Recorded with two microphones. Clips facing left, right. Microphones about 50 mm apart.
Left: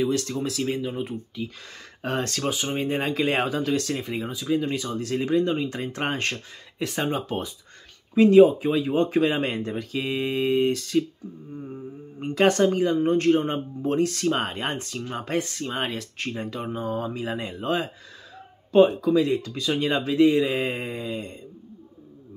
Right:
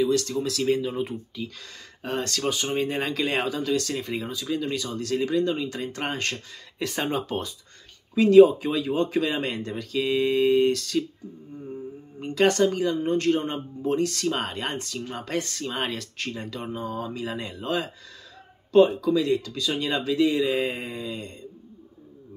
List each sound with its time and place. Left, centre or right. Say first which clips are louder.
0.0 s speech: right 1 dB; left
0.7 s speech: right 3 dB; centre
2.0 s speech: left 1 dB; left
2.5 s speech: even; centre; by 3.9 s left
3.9 s speech: left 1 dB; centre; by 6.4 s left
6.8 s speech: left 1 dB; centre
12.2 s speech: left 1 dB; left
16.7 s mantra: left 3 dB; left
17.1 s speech: left 2 dB; left
18.9 s speech: left 1 dB; left